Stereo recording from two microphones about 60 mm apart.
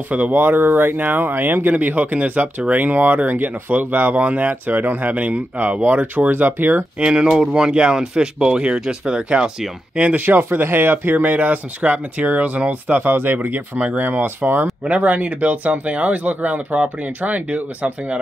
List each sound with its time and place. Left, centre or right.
0.1 s speech: right
7.0 s speech: centre
10.0 s speech: right
14.9 s speech: right